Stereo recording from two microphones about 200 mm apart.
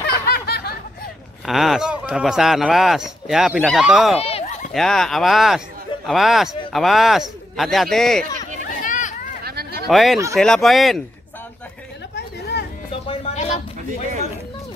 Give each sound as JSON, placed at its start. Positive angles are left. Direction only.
{"t": 0.0, "sound": "snicker", "side_deg": 50}
{"t": 1.4, "sound": "speech", "side_deg": 0}
{"t": 4.2, "sound": "a sound", "side_deg": 30}
{"t": 4.7, "sound": "speech", "side_deg": 0}
{"t": 8.6, "sound": "children playing", "side_deg": 40}
{"t": 9.4, "sound": "a sound", "side_deg": -50}
{"t": 9.8, "sound": "speech", "side_deg": 0}
{"t": 12.2, "sound": "chatter", "side_deg": 55}
{"t": 12.9, "sound": "music", "side_deg": 30}